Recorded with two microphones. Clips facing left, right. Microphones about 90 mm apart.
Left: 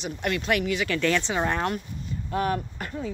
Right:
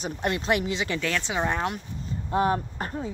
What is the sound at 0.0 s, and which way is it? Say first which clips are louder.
Speech: right 1 dB; 30° right (ahead or behind).